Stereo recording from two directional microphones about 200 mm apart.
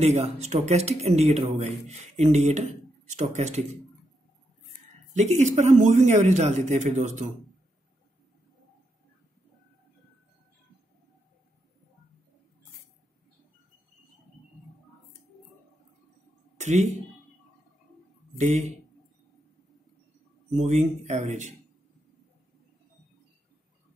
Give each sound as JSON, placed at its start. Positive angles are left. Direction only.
{"t": 0.0, "sound": "a man's voice", "side_deg": -30}
{"t": 5.1, "sound": "a man's voice", "side_deg": -35}
{"t": 16.5, "sound": "a sound", "side_deg": -35}
{"t": 18.4, "sound": "a man's voice", "side_deg": -35}
{"t": 20.5, "sound": "a man's voice", "side_deg": -35}